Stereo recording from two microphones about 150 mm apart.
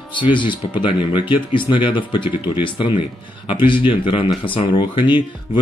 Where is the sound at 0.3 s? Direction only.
30° left (ahead or behind).